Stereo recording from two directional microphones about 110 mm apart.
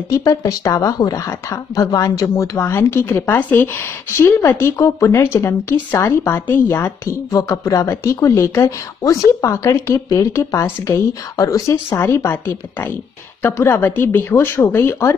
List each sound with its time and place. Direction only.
0.1 s a woman's voice: 30° left (ahead or behind)